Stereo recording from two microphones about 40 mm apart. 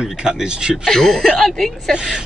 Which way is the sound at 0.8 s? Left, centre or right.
Centre.